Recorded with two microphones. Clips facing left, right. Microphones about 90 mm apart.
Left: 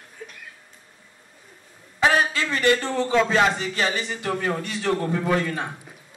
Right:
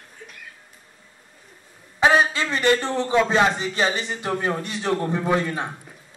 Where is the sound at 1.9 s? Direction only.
20° right (ahead or behind).